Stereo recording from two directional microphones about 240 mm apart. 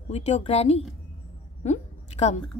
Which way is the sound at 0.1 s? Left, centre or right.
Left.